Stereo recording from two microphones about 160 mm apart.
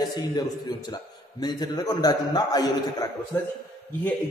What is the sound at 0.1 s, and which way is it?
A man's voice, 25° left (ahead or behind).